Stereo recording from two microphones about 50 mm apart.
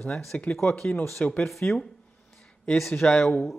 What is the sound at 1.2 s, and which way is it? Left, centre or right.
Speech, left.